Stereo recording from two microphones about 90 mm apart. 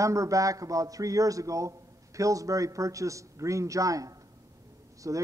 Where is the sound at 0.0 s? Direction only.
35° right (ahead or behind).